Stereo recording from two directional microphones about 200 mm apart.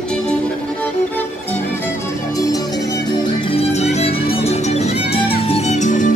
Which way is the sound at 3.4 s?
30° left (ahead or behind).